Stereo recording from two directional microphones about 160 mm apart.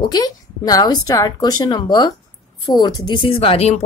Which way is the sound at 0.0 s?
25° left (ahead or behind).